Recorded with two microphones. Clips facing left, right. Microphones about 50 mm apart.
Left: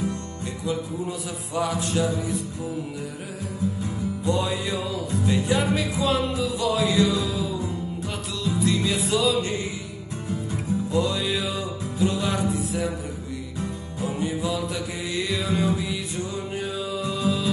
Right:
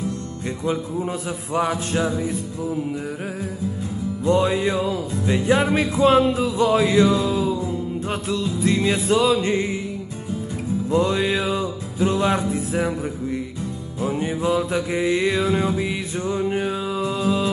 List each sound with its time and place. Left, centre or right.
0.7 s music: right
4.2 s music: right
10.9 s music: right
14.0 s mantra: right